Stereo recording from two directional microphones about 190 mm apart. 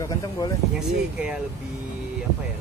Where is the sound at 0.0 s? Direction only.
20° left (ahead or behind).